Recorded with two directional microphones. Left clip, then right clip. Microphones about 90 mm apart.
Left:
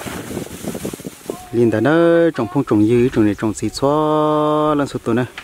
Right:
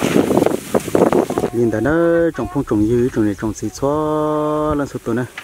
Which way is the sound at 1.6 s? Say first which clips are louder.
Left 4 dB; 25° left (ahead or behind).